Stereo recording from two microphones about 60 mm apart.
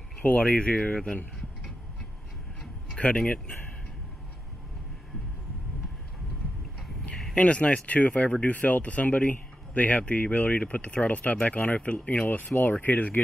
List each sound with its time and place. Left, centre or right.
0.2 s speech: left
3.0 s speech: left
7.3 s speech: left